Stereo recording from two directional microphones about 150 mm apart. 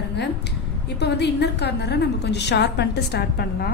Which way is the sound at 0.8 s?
90° left.